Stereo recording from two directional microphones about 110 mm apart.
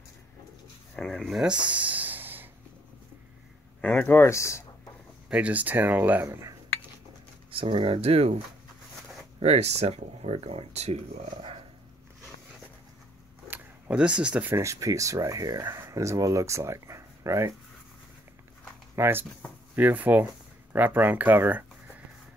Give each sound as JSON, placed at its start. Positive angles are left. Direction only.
{"t": 0.9, "sound": "a sound", "side_deg": 0}
{"t": 3.8, "sound": "speech", "side_deg": 20}
{"t": 5.3, "sound": "speech", "side_deg": -15}
{"t": 7.5, "sound": "speech", "side_deg": -55}
{"t": 9.4, "sound": "speech", "side_deg": -80}
{"t": 13.5, "sound": "a sound", "side_deg": -10}
{"t": 14.5, "sound": "speech", "side_deg": -25}
{"t": 18.9, "sound": "speech", "side_deg": -20}